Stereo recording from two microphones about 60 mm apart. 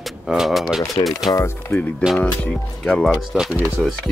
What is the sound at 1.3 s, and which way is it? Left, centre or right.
Speech, left.